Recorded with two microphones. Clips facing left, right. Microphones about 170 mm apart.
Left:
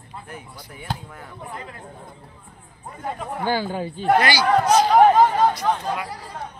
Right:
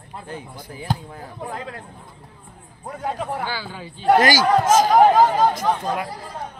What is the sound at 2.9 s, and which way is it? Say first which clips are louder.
Speech: right 4 dB; 85° right.